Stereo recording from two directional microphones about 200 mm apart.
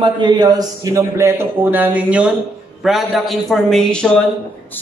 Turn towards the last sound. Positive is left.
turn(degrees=5)  # may be behind; listen again after turning